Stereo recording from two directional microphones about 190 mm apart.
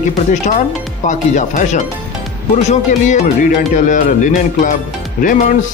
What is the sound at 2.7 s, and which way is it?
Speech, 40° left (ahead or behind).